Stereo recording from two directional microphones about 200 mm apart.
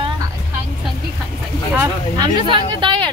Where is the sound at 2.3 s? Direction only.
25° right (ahead or behind).